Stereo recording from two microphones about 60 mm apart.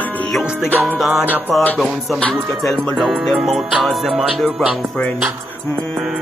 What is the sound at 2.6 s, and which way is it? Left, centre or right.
Music, centre.